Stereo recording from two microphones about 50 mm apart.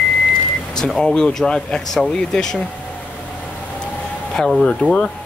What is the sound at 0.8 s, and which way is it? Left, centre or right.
Speech, centre.